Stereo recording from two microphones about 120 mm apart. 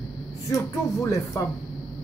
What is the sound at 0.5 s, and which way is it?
Speech, 25° left (ahead or behind).